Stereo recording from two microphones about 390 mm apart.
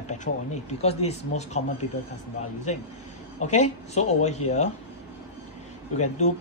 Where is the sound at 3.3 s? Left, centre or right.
Centre.